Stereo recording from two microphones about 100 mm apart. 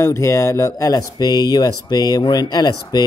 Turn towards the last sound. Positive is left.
turn(degrees=40)  # may be behind; listen again after turning